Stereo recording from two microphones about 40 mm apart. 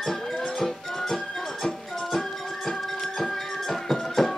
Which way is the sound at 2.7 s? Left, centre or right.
Centre.